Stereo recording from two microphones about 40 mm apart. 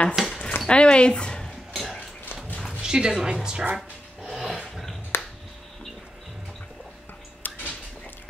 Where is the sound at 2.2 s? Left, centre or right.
Left.